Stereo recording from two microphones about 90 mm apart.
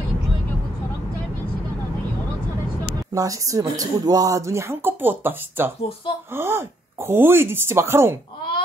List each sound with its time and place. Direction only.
3.2 s speech: 40° right (ahead or behind)